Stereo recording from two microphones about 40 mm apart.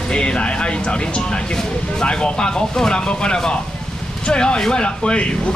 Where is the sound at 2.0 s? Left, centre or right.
Left.